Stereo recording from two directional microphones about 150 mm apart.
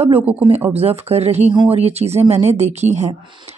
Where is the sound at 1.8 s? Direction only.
45° right (ahead or behind).